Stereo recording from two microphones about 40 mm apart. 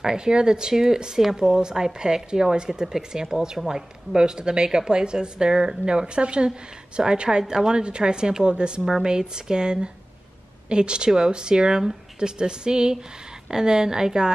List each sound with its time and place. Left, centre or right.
0.0 s a woman's voice: centre